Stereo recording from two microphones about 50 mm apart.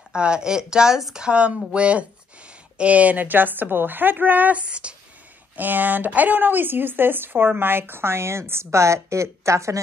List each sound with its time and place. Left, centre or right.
0.1 s a woman's voice: centre; by 4.6 s right
4.6 s speech: right
5.6 s a woman's voice: right